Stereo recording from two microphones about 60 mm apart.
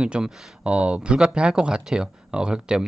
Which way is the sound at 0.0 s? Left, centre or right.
Centre.